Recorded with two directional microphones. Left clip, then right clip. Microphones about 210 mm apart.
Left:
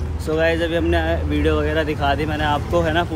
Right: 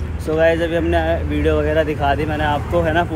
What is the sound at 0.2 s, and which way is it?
Speech, 10° left (ahead or behind).